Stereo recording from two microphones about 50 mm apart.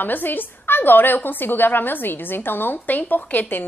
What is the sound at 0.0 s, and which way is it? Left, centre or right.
A woman's voice, left.